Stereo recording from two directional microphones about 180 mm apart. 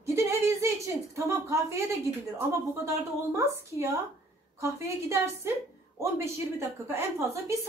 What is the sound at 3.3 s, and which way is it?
A woman's voice, 15° right (ahead or behind).